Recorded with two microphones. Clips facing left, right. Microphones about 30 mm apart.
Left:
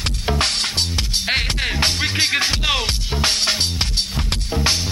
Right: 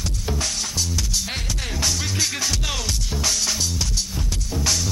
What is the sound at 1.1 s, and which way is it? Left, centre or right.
Music, left.